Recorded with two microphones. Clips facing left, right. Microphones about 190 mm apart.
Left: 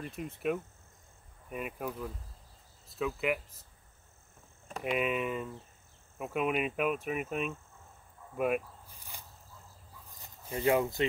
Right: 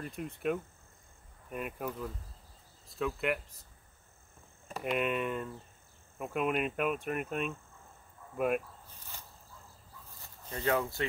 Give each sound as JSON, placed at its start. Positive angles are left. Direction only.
{"t": 0.0, "sound": "speech", "side_deg": 0}
{"t": 4.6, "sound": "speech", "side_deg": 0}
{"t": 8.4, "sound": "zipper", "side_deg": 0}
{"t": 10.2, "sound": "speech", "side_deg": 15}